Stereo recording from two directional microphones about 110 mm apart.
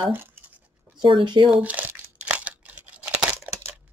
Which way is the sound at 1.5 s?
15° right (ahead or behind).